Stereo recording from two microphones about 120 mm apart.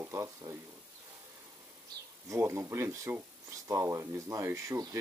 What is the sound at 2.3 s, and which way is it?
Speech, 25° right (ahead or behind).